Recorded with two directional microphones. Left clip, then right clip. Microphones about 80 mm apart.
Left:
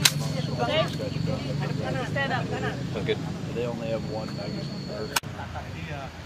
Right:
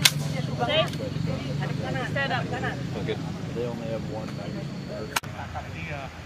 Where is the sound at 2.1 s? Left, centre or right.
Centre.